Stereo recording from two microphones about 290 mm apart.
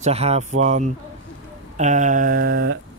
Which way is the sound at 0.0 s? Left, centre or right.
Right.